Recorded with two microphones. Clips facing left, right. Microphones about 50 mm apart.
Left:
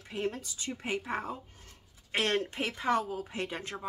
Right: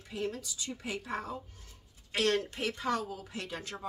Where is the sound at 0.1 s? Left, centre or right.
Left.